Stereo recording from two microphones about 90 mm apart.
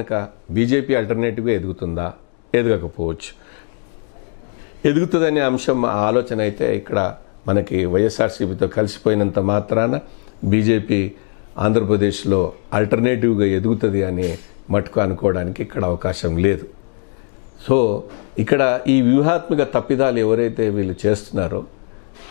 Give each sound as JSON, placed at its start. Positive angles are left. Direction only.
{"t": 0.0, "sound": "speech", "side_deg": 20}
{"t": 4.8, "sound": "speech", "side_deg": 15}
{"t": 17.6, "sound": "speech", "side_deg": 20}